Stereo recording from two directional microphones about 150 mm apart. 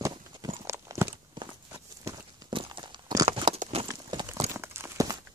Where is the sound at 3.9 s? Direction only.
30° right (ahead or behind).